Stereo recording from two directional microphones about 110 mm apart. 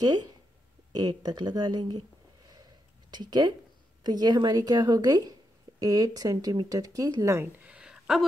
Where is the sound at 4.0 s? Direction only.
40° right (ahead or behind).